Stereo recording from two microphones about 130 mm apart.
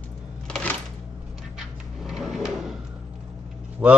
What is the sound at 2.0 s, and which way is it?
Drawer open or close, centre (ahead or behind).